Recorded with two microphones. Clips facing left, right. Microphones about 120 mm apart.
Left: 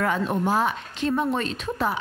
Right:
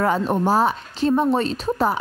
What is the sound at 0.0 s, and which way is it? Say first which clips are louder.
A woman's voice: right 4 dB; 35° right (ahead or behind).